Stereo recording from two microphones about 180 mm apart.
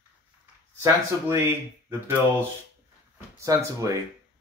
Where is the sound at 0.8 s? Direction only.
15° right (ahead or behind).